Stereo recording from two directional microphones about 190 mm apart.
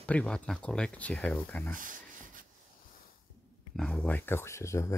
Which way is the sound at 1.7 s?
45° right (ahead or behind).